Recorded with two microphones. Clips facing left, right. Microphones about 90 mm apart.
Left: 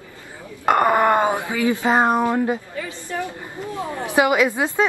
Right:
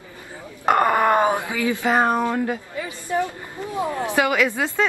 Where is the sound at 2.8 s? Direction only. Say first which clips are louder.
Right 4 dB; 20° right (ahead or behind).